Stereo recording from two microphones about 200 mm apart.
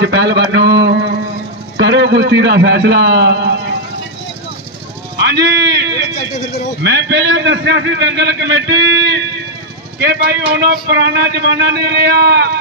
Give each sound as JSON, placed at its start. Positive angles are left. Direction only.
{"t": 0.0, "sound": "a sound", "side_deg": -60}
{"t": 1.8, "sound": "a man's voice", "side_deg": -60}
{"t": 5.2, "sound": "clip-clop", "side_deg": -55}
{"t": 6.8, "sound": "a man's voice", "side_deg": -60}
{"t": 9.9, "sound": "a man's voice", "side_deg": -55}